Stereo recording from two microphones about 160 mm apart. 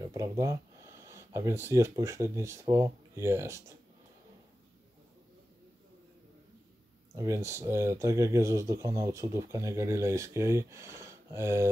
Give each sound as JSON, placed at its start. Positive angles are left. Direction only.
{"t": 0.1, "sound": "speech", "side_deg": -20}
{"t": 7.2, "sound": "speech", "side_deg": -20}